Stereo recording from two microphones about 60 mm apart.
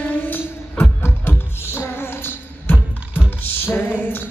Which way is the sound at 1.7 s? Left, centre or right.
Left.